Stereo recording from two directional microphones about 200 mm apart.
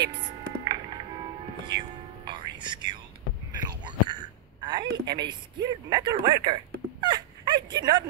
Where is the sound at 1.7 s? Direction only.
20° right (ahead or behind).